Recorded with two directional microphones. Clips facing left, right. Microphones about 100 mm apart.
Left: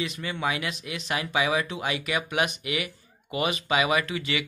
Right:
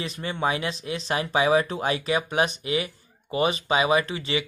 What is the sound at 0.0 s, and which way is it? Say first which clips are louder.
Speech: right 2 dB; 35° right (ahead or behind).